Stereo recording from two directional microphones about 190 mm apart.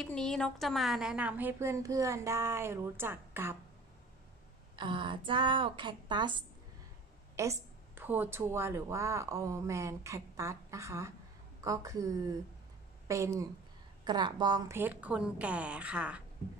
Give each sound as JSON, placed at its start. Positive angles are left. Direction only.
{"t": 0.0, "sound": "a woman's voice", "side_deg": 5}
{"t": 4.7, "sound": "a woman's voice", "side_deg": -25}
{"t": 7.3, "sound": "a woman's voice", "side_deg": -15}